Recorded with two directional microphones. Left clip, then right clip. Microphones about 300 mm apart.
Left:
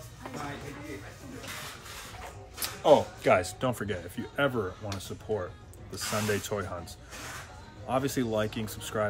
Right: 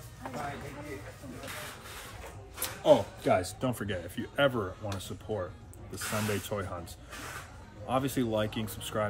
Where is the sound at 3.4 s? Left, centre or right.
Centre.